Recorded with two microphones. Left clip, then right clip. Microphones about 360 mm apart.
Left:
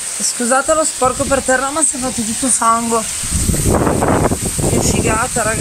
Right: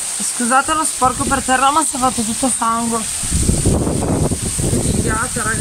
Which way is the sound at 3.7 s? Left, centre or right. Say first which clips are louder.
Left 6 dB; left.